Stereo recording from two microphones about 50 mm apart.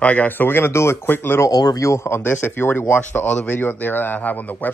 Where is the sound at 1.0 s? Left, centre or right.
Left.